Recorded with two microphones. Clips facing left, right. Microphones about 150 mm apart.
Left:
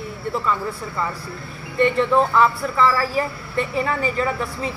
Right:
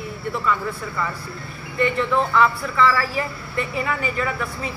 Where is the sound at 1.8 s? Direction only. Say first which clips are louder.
Left 3 dB; 35° left (ahead or behind).